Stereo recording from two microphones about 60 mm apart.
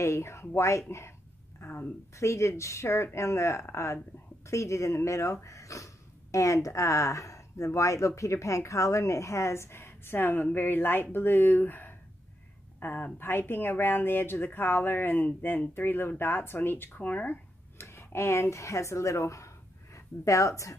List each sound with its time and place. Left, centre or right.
0.0 s speech: left
1.6 s a sound: left
2.1 s speech: left
17.7 s speech: left